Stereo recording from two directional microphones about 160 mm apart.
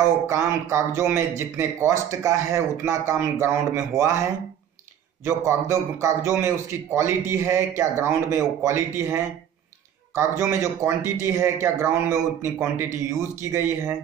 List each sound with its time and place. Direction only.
0.3 s a man's voice: 15° right (ahead or behind)
5.2 s a man's voice: 15° right (ahead or behind)